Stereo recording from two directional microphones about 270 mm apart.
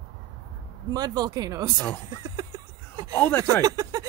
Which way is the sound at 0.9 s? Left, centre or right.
Centre.